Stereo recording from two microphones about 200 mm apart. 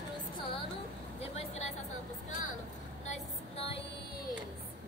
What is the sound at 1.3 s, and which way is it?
Vehicle, 35° left (ahead or behind).